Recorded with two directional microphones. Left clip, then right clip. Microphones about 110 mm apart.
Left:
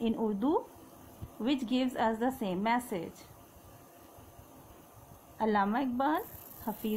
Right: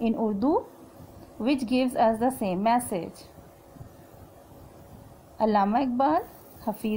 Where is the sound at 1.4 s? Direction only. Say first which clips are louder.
Right 6 dB; 60° right (ahead or behind).